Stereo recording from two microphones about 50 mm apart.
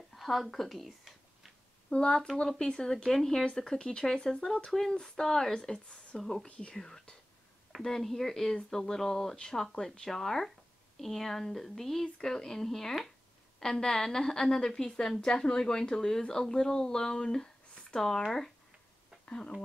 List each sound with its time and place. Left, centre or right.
0.1 s speech: centre
1.9 s a woman's voice: centre
5.2 s a woman's voice: centre
5.6 s speech: centre
6.7 s a woman's voice: centre
19.2 s speech: left